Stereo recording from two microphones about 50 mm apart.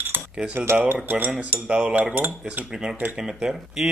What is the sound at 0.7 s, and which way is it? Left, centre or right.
Speech, right.